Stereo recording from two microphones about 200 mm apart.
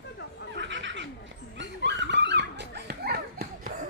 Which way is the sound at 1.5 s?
60° right (ahead or behind).